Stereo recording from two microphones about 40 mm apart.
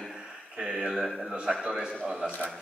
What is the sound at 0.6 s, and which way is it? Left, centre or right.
Speech, centre.